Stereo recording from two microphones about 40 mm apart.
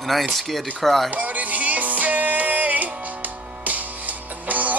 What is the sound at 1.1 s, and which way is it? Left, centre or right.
Music, right.